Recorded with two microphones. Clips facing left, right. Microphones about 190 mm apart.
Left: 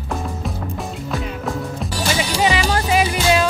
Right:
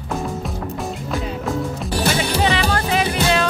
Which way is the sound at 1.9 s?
60° right (ahead or behind).